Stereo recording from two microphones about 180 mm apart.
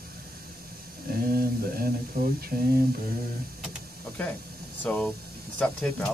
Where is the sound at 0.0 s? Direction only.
55° right (ahead or behind).